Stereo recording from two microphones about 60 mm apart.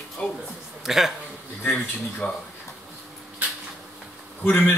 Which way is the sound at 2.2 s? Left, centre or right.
Centre.